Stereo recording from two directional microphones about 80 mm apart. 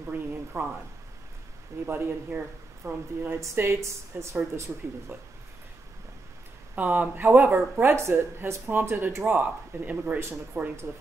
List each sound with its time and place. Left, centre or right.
0.1 s speech: right
1.9 s a woman's voice: right
4.7 s speech: centre
6.7 s a woman's voice: right
10.6 s a woman's voice: right